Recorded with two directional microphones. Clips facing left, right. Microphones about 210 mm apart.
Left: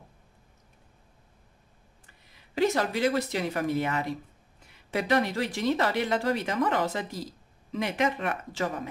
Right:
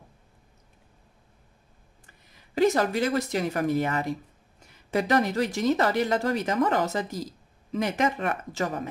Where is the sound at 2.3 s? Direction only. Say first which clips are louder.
Right 3 dB; 45° right (ahead or behind).